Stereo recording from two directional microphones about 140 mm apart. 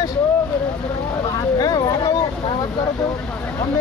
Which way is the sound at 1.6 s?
25° left (ahead or behind).